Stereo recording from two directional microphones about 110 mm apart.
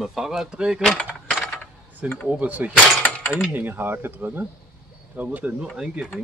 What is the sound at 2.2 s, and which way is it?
Speech, 15° right (ahead or behind).